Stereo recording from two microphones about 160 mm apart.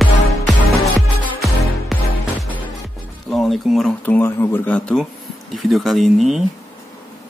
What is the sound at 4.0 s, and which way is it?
Speech, 15° left (ahead or behind).